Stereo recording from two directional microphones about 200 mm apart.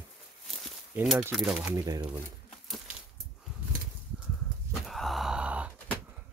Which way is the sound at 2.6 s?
Centre (ahead or behind).